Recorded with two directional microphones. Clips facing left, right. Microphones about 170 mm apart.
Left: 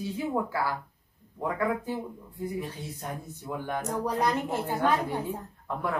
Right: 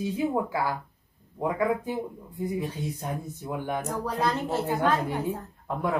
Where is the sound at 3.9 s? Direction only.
15° left (ahead or behind).